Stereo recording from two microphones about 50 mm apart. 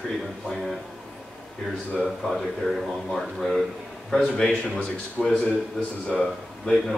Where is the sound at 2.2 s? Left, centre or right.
Centre.